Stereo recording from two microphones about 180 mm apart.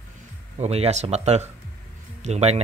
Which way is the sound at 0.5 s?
35° right (ahead or behind).